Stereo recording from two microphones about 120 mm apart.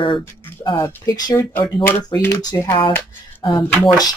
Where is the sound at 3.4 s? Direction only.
40° left (ahead or behind).